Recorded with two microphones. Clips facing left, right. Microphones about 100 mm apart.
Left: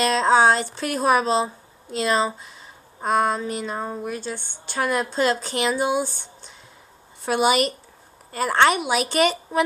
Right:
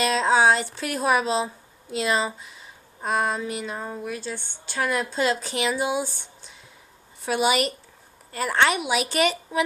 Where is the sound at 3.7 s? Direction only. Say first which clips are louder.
Left 4 dB; 35° left (ahead or behind).